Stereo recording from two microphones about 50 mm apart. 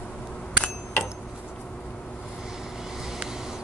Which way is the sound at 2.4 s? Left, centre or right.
Centre.